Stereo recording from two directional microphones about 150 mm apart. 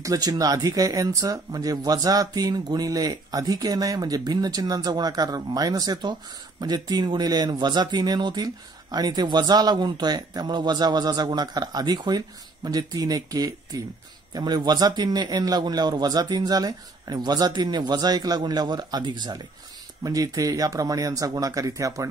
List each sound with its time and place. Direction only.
0.0 s speech: 25° right (ahead or behind)